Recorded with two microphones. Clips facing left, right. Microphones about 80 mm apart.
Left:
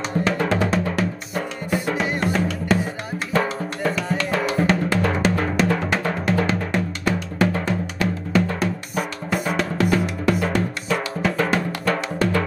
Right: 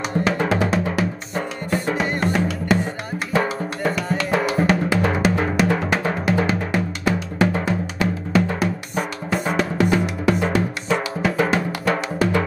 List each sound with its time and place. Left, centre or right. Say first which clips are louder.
0.1 s music: right 1 dB; centre
3.3 s drum: right 1 dB; centre
6.2 s music: right 1 dB; centre
8.5 s drum: right 1 dB; centre
10.9 s music: right 2 dB; centre